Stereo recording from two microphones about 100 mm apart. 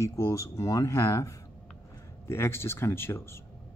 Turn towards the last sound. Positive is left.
turn(degrees=25)  # may be behind; listen again after turning